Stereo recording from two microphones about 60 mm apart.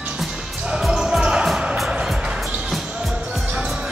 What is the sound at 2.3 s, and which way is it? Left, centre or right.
Music, centre.